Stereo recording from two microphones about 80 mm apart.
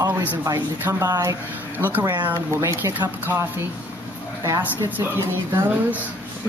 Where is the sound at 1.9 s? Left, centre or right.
Right.